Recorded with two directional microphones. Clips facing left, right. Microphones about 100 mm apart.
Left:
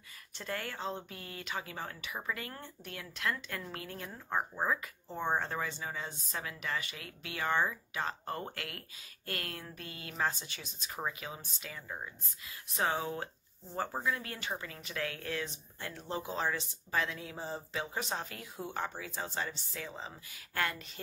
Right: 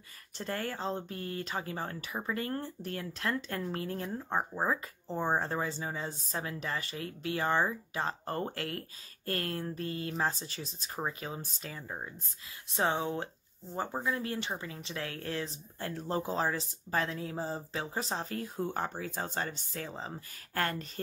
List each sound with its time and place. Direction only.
0.4 s speech: 35° right (ahead or behind)
12.6 s speech: 30° right (ahead or behind)